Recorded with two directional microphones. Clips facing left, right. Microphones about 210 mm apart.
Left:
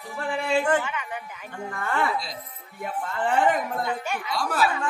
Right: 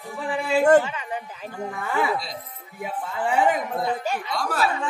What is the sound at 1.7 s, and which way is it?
Speech, 5° right (ahead or behind).